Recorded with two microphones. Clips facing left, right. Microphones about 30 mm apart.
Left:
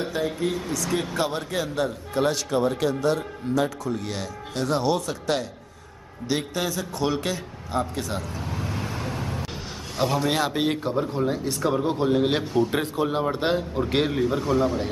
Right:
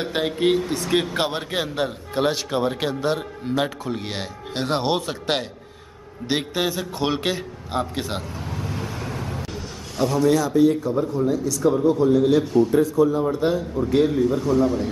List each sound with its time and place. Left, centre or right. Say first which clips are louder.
0.0 s a man's voice: right 4 dB; right
6.2 s a man's voice: right 3 dB; right
8.4 s vehicle: right 1 dB; centre
9.9 s speech: right 2 dB; left
10.2 s a man's voice: right 6 dB; left
14.2 s a man's voice: right 3 dB; left